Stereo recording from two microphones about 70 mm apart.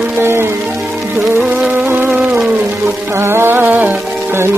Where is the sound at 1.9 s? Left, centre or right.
Right.